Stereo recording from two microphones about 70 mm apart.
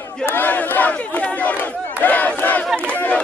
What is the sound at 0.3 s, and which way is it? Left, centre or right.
Battle cry, left.